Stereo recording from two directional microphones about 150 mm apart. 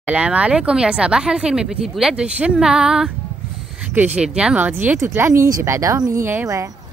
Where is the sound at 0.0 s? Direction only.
10° right (ahead or behind).